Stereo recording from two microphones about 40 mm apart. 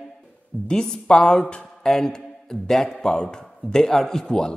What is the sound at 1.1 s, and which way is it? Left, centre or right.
Speech, left.